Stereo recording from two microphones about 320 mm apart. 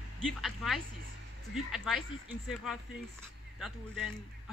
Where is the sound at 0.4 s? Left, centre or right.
Centre.